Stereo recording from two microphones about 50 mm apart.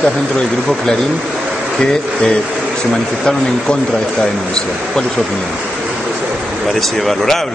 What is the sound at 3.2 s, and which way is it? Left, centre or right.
Speech, centre.